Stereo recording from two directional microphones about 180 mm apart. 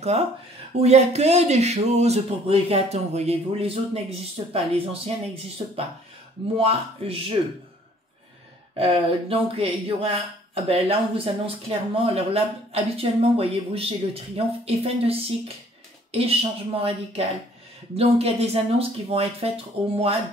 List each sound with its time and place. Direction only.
0.7 s speech: 35° right (ahead or behind)
6.5 s speech: 30° right (ahead or behind)
8.7 s speech: 30° right (ahead or behind)